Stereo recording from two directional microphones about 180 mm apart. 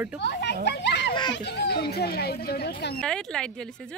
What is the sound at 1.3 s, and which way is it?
A child's voice, 65° left (ahead or behind).